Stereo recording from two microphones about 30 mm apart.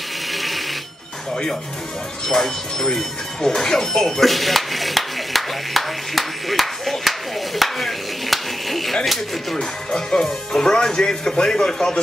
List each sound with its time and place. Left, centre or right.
0.3 s a sound: centre
2.2 s speech: centre
4.0 s speech: centre
9.6 s speech: centre